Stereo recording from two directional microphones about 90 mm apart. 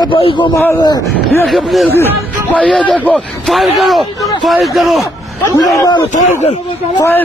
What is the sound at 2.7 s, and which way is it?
Speech, 15° left (ahead or behind).